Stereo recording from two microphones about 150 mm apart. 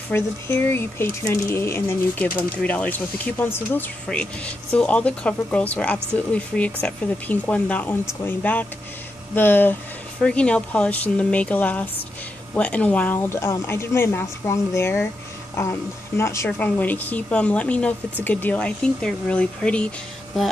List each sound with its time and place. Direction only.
0.1 s speech: 15° left (ahead or behind)